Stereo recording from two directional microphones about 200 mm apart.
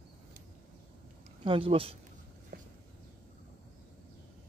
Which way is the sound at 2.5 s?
50° right (ahead or behind).